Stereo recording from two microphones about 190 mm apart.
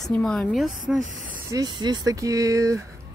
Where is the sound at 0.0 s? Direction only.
5° left (ahead or behind).